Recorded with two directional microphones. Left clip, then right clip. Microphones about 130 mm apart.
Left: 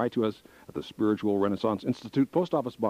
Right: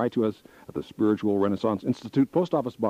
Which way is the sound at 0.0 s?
30° left (ahead or behind).